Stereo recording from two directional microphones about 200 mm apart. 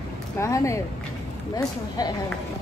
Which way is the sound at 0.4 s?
15° left (ahead or behind).